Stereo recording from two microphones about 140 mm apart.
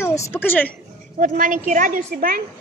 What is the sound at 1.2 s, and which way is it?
A woman's voice, 70° right (ahead or behind).